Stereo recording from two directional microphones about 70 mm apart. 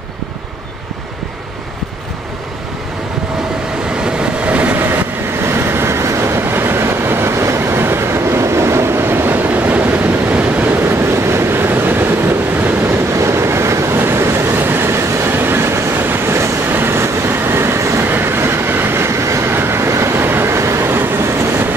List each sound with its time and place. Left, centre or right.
4.0 s train: centre
4.7 s train: right
13.1 s train: right